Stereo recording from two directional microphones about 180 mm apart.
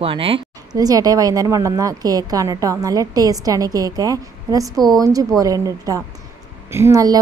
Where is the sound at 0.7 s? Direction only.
20° right (ahead or behind).